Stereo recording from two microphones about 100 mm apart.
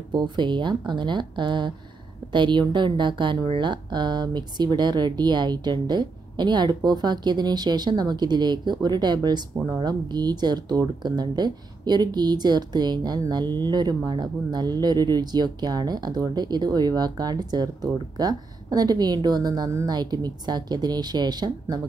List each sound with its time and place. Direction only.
0.1 s speech: 50° right (ahead or behind)